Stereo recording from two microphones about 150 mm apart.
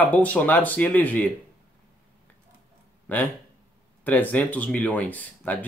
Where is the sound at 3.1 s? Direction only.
10° left (ahead or behind).